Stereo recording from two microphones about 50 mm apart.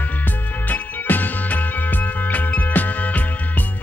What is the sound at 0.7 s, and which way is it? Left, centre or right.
Music, left.